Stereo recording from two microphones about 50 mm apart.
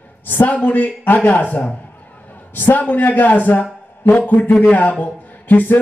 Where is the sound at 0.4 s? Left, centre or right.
Left.